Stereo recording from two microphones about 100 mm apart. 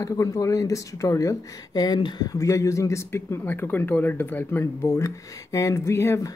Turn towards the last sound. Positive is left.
turn(degrees=25)  # may be behind; listen again after turning